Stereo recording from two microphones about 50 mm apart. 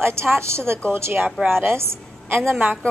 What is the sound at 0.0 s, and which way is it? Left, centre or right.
A woman's voice, right.